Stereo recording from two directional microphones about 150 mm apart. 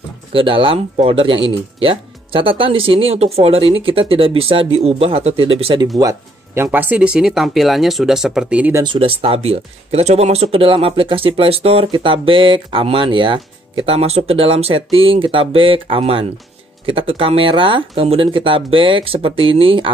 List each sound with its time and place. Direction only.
0.3 s speech: 35° right (ahead or behind)
5.9 s speech: 20° right (ahead or behind)
8.8 s speech: 35° right (ahead or behind)